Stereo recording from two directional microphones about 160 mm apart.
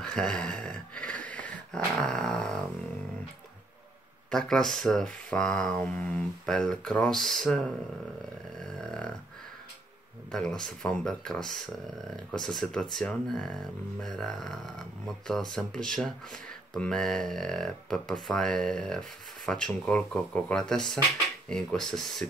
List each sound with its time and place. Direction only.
0.0 s speech: 5° left (ahead or behind)
4.3 s speech: 5° left (ahead or behind)
10.3 s speech: 5° left (ahead or behind)